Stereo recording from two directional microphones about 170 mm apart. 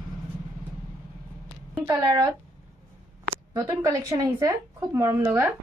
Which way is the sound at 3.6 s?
20° right (ahead or behind).